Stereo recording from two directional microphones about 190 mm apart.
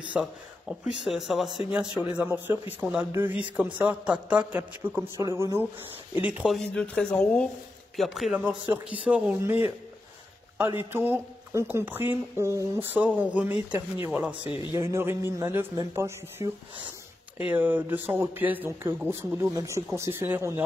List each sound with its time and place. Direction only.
0.1 s speech: 5° right (ahead or behind)
10.8 s speech: 10° right (ahead or behind)
14.5 s speech: 25° left (ahead or behind)
14.8 s speech: 15° right (ahead or behind)
17.5 s speech: 10° right (ahead or behind)